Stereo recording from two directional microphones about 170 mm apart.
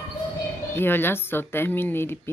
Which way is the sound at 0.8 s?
10° left (ahead or behind).